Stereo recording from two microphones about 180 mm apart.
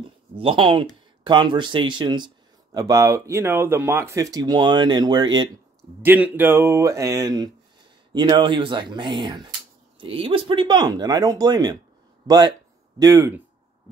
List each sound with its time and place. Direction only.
0.4 s speech: 30° right (ahead or behind)
6.0 s speech: 10° right (ahead or behind)